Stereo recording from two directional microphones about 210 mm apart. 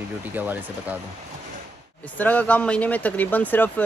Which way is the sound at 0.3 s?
10° right (ahead or behind).